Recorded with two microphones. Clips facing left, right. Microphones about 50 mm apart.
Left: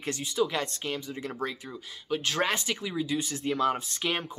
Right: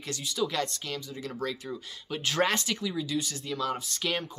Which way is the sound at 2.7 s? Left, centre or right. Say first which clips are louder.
Left 1 dB; centre.